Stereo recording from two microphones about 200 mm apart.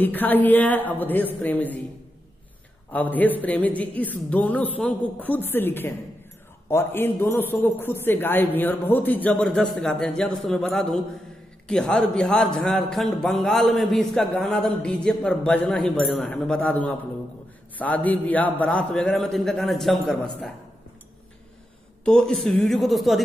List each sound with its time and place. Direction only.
0.0 s a man's voice: 10° left (ahead or behind)
2.9 s a man's voice: 10° left (ahead or behind)
22.0 s a man's voice: 5° left (ahead or behind)